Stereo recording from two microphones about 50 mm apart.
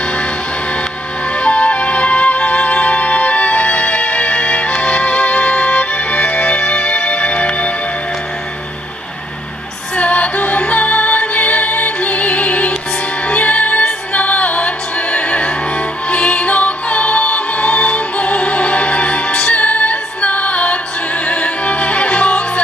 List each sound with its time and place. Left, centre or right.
1.4 s music: left
9.9 s music: left